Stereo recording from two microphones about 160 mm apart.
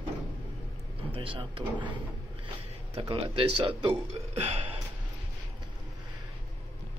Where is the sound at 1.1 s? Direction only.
35° right (ahead or behind).